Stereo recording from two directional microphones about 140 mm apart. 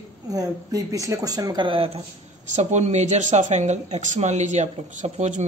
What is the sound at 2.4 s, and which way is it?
Speech, 55° right (ahead or behind).